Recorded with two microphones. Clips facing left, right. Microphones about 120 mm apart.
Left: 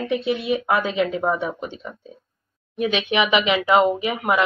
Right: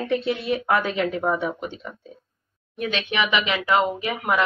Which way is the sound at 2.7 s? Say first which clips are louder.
Left 4 dB; 15° left (ahead or behind).